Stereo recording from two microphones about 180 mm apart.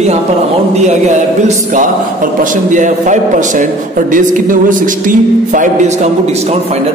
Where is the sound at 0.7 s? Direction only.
40° right (ahead or behind).